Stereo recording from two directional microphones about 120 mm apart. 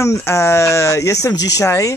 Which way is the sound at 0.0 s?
25° left (ahead or behind).